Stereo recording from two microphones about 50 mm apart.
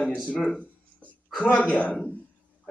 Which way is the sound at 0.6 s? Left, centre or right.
Left.